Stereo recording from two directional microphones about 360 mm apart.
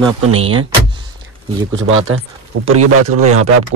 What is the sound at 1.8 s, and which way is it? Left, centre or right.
Speech, right.